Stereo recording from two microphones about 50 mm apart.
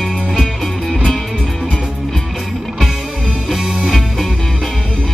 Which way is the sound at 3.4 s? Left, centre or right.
Centre.